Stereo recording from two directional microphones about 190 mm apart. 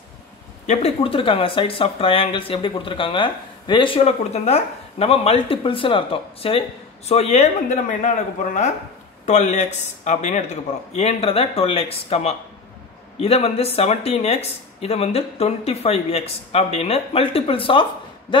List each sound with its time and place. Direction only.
0.7 s speech: 30° left (ahead or behind)
9.2 s speech: 35° left (ahead or behind)